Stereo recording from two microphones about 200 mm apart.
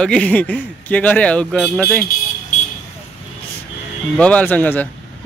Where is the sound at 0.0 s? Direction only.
5° left (ahead or behind).